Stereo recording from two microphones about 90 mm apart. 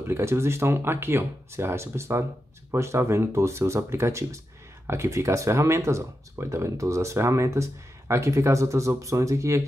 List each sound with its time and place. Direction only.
0.0 s speech: 30° right (ahead or behind)